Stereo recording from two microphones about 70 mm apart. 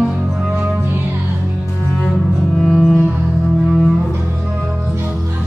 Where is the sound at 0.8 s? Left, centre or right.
Right.